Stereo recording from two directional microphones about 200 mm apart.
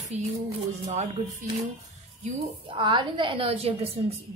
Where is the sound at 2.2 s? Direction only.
25° right (ahead or behind).